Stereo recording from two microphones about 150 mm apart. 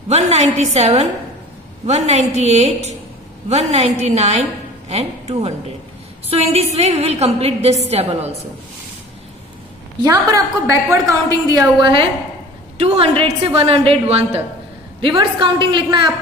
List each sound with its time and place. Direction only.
0.1 s a woman's voice: 45° right (ahead or behind)
10.0 s a woman's voice: 25° right (ahead or behind)
11.8 s a woman's voice: 35° right (ahead or behind)